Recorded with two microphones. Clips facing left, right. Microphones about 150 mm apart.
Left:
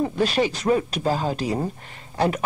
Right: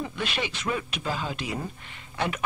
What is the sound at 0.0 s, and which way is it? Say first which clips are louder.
Speech: left 10 dB; 40° left (ahead or behind).